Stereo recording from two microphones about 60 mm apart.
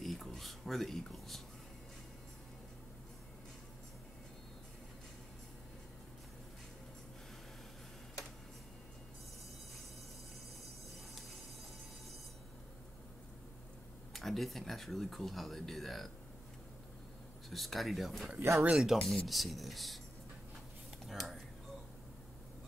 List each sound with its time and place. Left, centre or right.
0.0 s a sound: centre
14.1 s speech: centre
17.5 s speech: centre
18.4 s speech: right
18.8 s speech: centre
21.1 s a sound: centre